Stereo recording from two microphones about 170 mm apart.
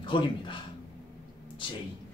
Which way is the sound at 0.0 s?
30° left (ahead or behind).